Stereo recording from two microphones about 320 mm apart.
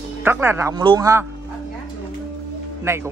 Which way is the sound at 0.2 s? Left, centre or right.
Centre.